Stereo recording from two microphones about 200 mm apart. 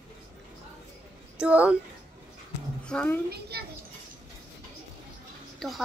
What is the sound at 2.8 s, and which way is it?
Speech, 5° left (ahead or behind).